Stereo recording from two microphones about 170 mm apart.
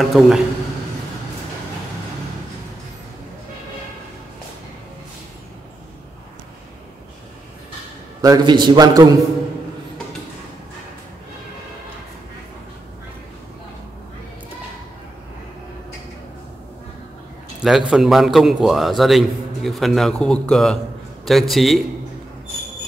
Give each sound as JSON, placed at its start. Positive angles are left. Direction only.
{"t": 0.0, "sound": "a man's voice", "side_deg": 0}
{"t": 8.2, "sound": "a man's voice", "side_deg": -25}
{"t": 17.6, "sound": "a man's voice", "side_deg": -5}